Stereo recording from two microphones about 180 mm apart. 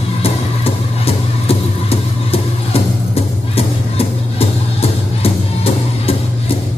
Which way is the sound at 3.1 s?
35° left (ahead or behind).